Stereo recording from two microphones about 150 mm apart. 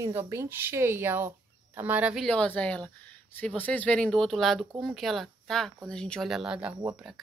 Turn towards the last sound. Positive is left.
turn(degrees=-5)  # may be behind; listen again after turning